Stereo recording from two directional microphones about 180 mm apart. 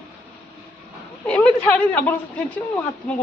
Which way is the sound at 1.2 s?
5° left (ahead or behind).